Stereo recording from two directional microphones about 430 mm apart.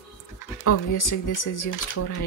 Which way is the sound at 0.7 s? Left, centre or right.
Left.